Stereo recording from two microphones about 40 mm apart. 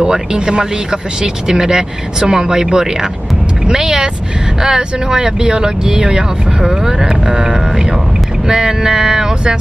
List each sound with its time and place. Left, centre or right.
0.0 s speech: centre